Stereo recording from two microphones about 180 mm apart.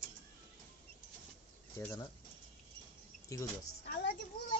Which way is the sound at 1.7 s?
15° left (ahead or behind).